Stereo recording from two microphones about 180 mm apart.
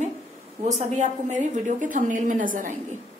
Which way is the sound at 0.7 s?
40° right (ahead or behind).